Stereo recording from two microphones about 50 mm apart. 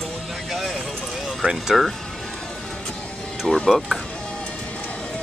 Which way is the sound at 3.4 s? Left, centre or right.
Centre.